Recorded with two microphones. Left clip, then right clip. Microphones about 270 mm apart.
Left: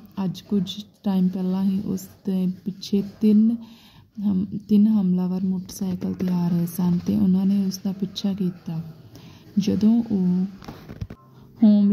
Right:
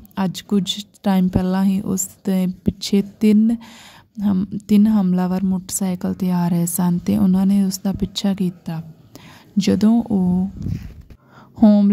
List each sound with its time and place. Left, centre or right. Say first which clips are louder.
0.1 s speech: right 6 dB; right
11.6 s speech: right 4 dB; right